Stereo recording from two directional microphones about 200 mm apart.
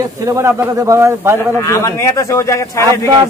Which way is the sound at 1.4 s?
15° left (ahead or behind).